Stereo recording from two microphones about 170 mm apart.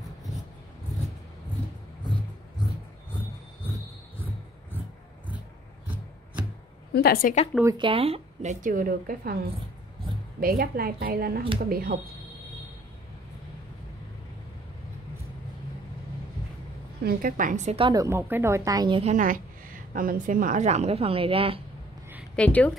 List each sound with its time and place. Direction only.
6.9 s a woman's voice: 65° left (ahead or behind)
7.6 s a woman's voice: 30° right (ahead or behind); by 9.3 s 55° right (ahead or behind)
10.4 s a woman's voice: 60° right (ahead or behind)
17.0 s a woman's voice: 60° right (ahead or behind); by 17.8 s 45° right (ahead or behind)
17.8 s speech: 20° right (ahead or behind)
19.0 s a woman's voice: 50° right (ahead or behind); by 21.5 s 30° right (ahead or behind)
22.3 s a woman's voice: 10° left (ahead or behind)